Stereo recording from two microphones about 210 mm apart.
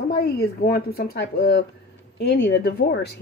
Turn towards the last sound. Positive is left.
turn(degrees=55)  # may be behind; listen again after turning